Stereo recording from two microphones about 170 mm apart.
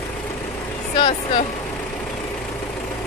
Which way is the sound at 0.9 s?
30° left (ahead or behind).